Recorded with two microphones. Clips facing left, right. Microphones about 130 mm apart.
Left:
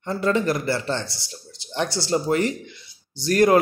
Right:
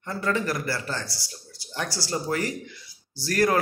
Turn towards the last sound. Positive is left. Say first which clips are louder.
# left 6 dB
turn(degrees=20)  # may be behind; listen again after turning